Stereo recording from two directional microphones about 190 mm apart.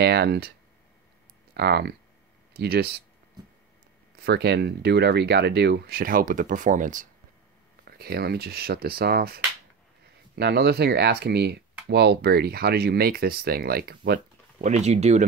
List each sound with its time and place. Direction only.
0.0 s speech: 60° right (ahead or behind)
1.5 s speech: 60° right (ahead or behind)
4.2 s speech: 60° right (ahead or behind); by 7.1 s 45° right (ahead or behind)
7.8 s speech: 55° right (ahead or behind)
14.6 s speech: 35° right (ahead or behind)